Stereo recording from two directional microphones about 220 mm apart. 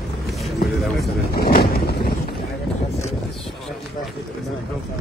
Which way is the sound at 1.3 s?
45° left (ahead or behind).